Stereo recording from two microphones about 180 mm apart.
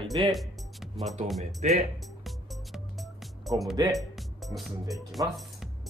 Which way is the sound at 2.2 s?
Centre (ahead or behind).